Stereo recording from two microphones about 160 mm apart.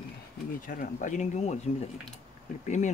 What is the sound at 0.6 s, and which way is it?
Speech, 55° left (ahead or behind).